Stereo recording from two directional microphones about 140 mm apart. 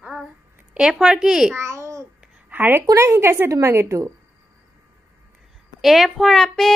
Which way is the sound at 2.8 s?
20° right (ahead or behind).